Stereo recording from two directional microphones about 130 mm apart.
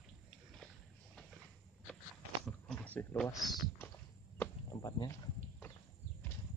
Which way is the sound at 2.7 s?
10° left (ahead or behind).